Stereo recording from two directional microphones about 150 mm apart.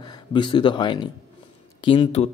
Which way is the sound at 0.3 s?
30° left (ahead or behind).